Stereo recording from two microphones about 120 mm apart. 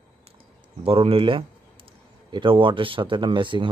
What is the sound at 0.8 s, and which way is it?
Speech, 50° right (ahead or behind).